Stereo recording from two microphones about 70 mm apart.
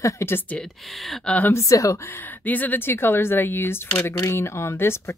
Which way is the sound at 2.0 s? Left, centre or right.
Left.